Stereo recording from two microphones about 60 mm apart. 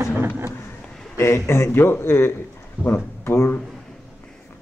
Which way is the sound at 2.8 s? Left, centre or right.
Right.